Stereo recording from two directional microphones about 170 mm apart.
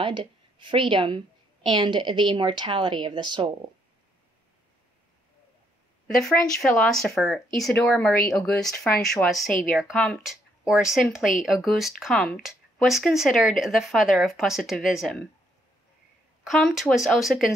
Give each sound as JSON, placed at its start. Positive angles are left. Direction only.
{"t": 0.0, "sound": "a woman's voice", "side_deg": -30}
{"t": 6.8, "sound": "speech", "side_deg": 0}
{"t": 16.4, "sound": "speech", "side_deg": 0}